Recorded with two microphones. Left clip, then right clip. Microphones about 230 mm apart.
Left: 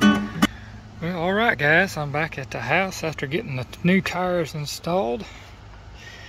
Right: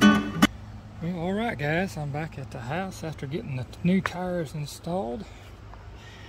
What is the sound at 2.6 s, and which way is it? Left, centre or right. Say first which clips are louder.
Speech: left 11 dB; left.